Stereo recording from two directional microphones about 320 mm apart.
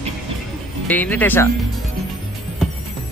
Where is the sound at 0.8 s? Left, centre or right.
Centre.